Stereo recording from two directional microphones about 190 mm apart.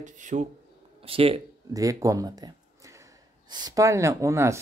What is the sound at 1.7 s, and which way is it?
Speech, 15° right (ahead or behind).